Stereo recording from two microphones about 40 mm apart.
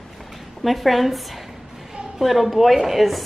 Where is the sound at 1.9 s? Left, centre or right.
Centre.